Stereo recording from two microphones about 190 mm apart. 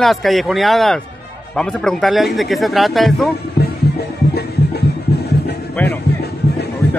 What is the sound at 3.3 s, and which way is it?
Music, 60° left (ahead or behind).